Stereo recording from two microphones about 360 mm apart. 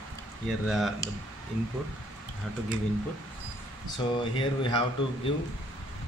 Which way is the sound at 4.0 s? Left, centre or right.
Centre.